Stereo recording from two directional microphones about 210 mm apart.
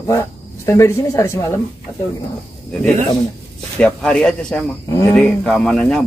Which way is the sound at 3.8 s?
5° left (ahead or behind).